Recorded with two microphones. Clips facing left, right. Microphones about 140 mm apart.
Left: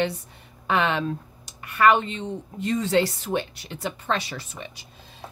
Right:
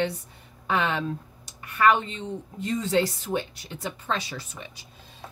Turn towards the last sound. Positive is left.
turn(degrees=75)  # may be behind; listen again after turning